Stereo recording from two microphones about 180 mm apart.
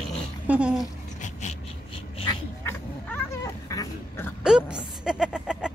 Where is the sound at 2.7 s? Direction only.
15° left (ahead or behind).